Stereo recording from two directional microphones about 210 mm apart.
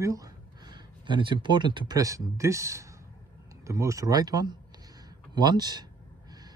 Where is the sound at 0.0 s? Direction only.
15° right (ahead or behind).